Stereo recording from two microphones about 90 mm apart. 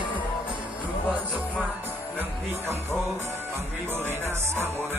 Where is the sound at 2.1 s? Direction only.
25° right (ahead or behind).